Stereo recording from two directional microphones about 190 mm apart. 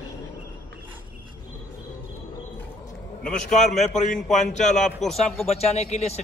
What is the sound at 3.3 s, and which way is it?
A man's voice, 5° left (ahead or behind).